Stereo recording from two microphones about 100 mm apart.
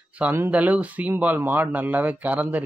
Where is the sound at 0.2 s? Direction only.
20° right (ahead or behind).